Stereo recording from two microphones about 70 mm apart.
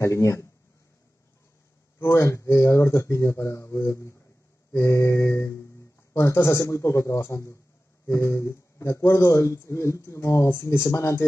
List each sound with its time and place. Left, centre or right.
0.0 s a man's voice: left
2.0 s a man's voice: left